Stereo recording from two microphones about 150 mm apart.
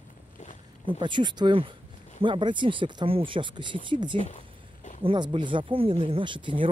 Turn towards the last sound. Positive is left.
turn(degrees=-35)  # may be behind; listen again after turning